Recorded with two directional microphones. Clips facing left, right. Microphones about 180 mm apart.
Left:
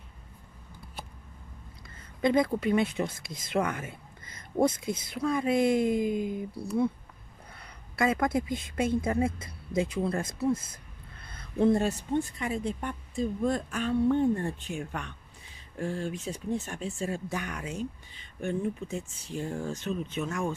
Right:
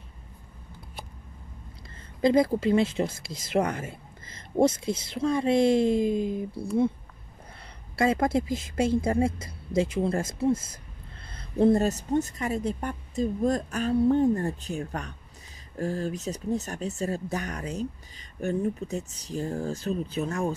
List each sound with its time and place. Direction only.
2.2 s a woman's voice: 30° right (ahead or behind)